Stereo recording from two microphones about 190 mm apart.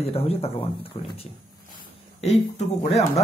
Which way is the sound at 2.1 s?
35° left (ahead or behind).